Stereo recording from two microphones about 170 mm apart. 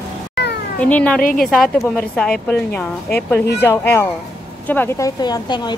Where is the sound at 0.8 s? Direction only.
5° left (ahead or behind).